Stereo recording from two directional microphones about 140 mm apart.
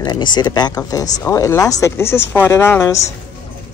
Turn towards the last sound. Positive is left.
turn(degrees=20)  # may be behind; listen again after turning